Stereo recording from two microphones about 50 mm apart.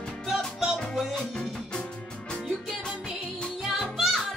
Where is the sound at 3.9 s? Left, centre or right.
Centre.